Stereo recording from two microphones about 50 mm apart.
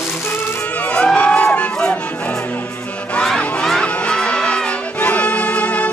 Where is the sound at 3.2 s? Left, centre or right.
Centre; by 5.9 s left.